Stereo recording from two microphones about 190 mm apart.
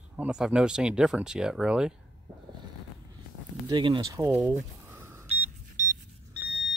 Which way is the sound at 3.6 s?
25° right (ahead or behind).